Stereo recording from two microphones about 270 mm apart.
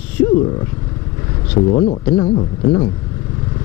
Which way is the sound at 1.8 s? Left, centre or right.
Centre.